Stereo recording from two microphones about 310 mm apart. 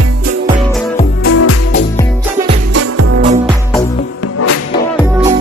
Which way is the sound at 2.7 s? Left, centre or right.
Right.